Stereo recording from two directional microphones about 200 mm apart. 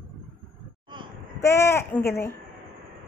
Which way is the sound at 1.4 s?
15° left (ahead or behind).